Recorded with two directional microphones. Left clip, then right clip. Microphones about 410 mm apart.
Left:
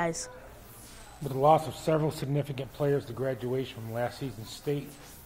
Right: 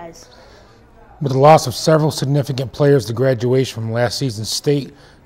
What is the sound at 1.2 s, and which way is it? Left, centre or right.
A man's voice, right.